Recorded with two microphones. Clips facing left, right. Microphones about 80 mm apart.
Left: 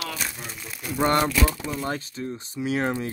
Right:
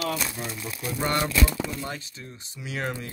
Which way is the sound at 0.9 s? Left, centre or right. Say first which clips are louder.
Left 4 dB; left.